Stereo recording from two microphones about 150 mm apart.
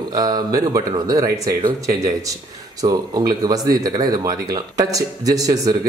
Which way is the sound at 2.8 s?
25° right (ahead or behind).